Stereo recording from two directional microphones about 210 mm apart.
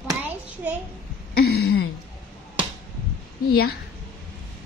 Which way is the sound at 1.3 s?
50° left (ahead or behind).